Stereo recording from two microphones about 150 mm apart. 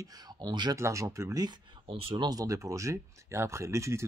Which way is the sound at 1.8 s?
40° right (ahead or behind).